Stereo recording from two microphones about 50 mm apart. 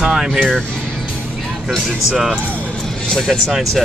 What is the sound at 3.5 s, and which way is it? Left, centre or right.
Speech, centre.